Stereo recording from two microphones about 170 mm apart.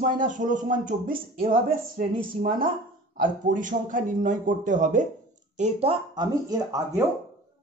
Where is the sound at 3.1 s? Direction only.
50° right (ahead or behind).